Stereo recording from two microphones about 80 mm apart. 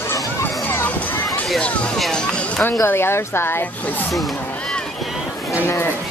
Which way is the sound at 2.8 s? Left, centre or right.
Left.